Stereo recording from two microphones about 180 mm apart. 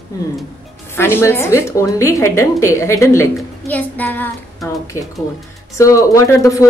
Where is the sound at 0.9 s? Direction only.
15° left (ahead or behind).